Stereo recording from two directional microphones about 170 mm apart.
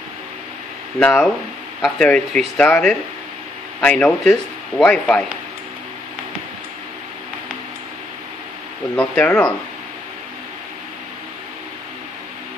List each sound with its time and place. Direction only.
0.9 s a man's voice: 5° left (ahead or behind)
8.9 s a man's voice: 5° left (ahead or behind)